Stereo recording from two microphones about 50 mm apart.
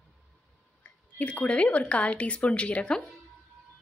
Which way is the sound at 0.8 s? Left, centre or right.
Left.